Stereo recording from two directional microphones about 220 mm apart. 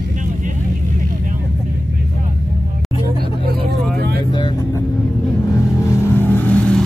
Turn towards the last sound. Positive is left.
turn(degrees=5)  # may be behind; listen again after turning